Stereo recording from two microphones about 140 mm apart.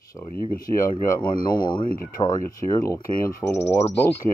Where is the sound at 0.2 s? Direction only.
35° left (ahead or behind).